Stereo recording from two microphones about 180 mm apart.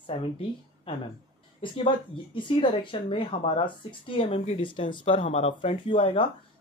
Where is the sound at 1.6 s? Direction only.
25° left (ahead or behind).